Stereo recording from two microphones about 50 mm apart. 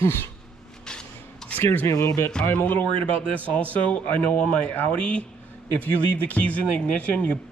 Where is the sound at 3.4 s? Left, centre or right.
Left.